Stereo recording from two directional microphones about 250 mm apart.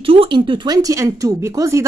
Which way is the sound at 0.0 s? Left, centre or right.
Right.